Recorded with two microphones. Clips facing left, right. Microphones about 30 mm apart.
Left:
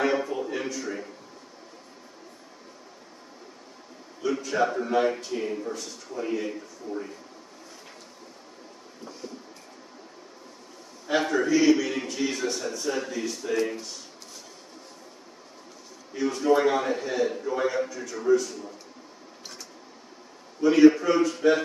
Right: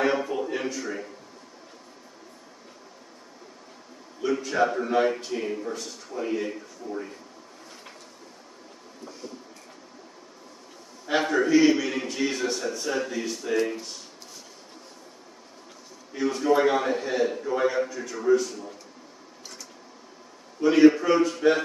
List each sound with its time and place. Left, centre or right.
0.0 s music: centre
4.2 s speech: centre
11.1 s speech: centre
16.1 s speech: centre
20.6 s speech: centre